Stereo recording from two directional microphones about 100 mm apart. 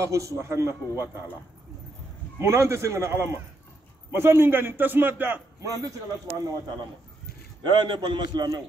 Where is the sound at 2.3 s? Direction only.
25° right (ahead or behind).